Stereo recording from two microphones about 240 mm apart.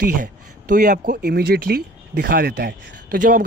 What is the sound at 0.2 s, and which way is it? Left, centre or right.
Speech, right.